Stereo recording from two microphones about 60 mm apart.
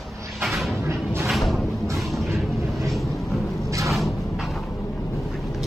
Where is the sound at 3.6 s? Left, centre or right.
Right.